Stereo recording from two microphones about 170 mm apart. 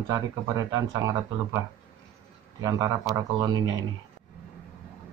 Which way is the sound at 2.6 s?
20° right (ahead or behind).